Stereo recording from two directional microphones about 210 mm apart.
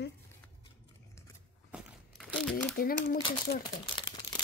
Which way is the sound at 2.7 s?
45° left (ahead or behind).